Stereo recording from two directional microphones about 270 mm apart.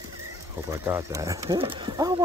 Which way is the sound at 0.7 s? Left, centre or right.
Centre.